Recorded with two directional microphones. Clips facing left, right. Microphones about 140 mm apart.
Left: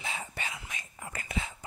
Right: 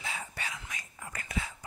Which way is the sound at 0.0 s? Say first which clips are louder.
Left 1 dB; 25° left (ahead or behind).